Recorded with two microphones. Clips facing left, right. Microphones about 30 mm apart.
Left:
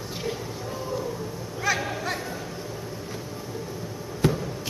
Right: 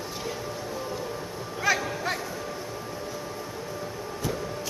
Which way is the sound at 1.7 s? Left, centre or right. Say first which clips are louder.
Right 1 dB; centre.